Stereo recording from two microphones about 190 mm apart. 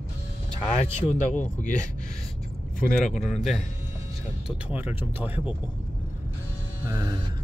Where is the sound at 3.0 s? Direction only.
40° left (ahead or behind).